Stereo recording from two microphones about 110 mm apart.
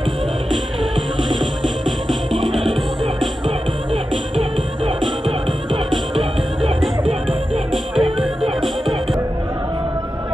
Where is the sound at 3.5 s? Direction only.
55° right (ahead or behind).